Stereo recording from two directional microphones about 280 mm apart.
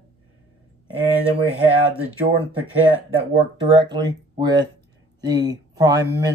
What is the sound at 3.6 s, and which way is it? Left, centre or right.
Speech, centre.